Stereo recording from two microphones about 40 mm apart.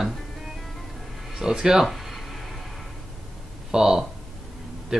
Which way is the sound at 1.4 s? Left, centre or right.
Centre.